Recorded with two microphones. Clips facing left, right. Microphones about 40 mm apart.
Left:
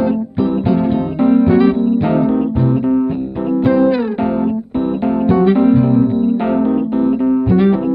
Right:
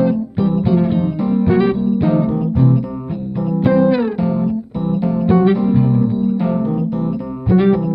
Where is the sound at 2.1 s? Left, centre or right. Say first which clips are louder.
Left 2 dB; left.